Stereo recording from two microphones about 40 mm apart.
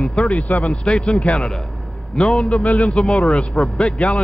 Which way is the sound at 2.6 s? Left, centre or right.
Left.